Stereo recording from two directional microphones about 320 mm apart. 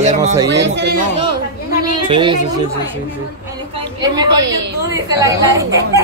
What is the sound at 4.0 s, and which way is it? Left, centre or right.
A woman's voice, centre.